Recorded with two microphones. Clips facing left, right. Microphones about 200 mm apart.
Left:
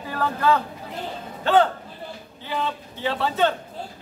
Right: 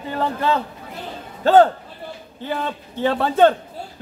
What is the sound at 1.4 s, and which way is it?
A man's voice, 40° right (ahead or behind).